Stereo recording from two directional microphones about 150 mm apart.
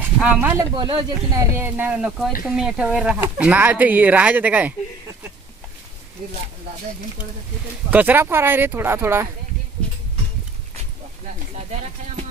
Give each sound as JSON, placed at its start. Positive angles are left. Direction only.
{"t": 0.2, "sound": "speech", "side_deg": -10}
{"t": 0.7, "sound": "speech", "side_deg": -30}
{"t": 7.9, "sound": "speech", "side_deg": -10}